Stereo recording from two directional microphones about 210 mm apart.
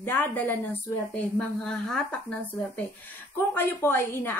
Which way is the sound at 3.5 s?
10° left (ahead or behind).